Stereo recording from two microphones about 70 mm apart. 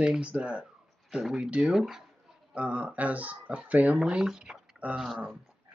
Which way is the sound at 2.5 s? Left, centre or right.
Centre.